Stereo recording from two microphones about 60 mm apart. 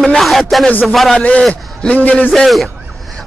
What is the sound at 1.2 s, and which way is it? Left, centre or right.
A man's voice, centre.